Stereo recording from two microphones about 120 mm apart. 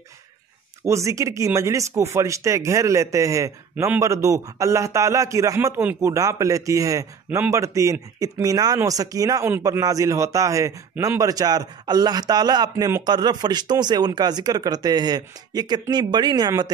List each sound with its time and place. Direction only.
0.8 s speech: 25° right (ahead or behind)